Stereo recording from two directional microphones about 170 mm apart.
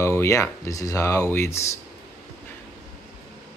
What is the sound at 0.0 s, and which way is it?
Speech, 15° left (ahead or behind).